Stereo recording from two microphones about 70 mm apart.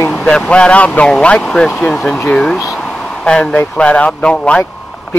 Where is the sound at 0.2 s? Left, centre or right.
Centre.